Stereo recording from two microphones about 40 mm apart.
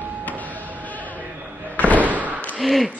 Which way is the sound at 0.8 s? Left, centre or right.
Left.